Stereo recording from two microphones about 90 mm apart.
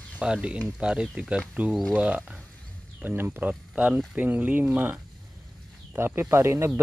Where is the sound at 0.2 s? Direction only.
10° right (ahead or behind).